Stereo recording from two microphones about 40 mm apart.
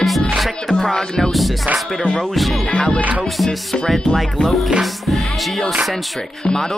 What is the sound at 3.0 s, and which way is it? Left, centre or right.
Music, right.